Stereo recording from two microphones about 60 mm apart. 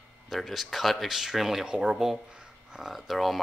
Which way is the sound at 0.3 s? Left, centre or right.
Centre.